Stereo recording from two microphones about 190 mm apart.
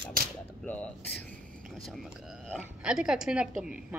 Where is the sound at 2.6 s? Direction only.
5° right (ahead or behind).